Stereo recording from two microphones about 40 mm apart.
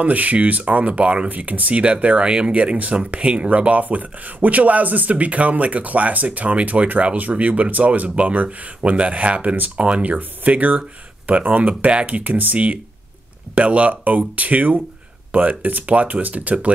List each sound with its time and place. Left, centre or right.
0.0 s speech: right
10.1 s speech: right
12.2 s speech: right
13.6 s speech: right